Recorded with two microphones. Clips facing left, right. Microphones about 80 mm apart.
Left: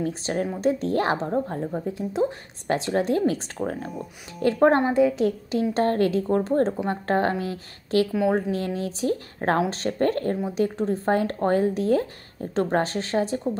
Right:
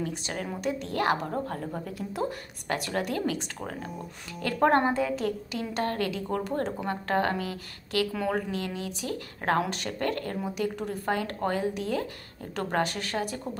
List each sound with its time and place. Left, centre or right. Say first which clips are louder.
0.0 s a woman's voice: left 7 dB; left; by 5.3 s centre
5.5 s a woman's voice: left 8 dB; left
8.1 s a woman's voice: left 7 dB; centre
8.4 s a woman's voice: left 6 dB; left